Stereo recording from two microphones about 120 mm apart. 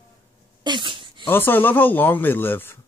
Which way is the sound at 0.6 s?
40° right (ahead or behind).